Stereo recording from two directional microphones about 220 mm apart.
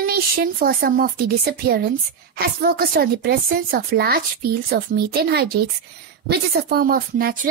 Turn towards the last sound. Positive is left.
turn(degrees=-40)  # may be behind; listen again after turning